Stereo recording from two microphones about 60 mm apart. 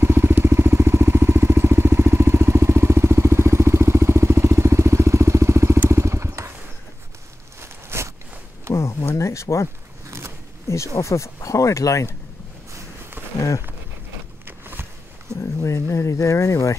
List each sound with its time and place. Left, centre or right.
0.0 s vehicle: right
5.9 s motorcycle: right
7.6 s walk: right
8.7 s a sound: left
10.0 s a sound: right
10.7 s speech: left
14.4 s walk: right
15.6 s speech: left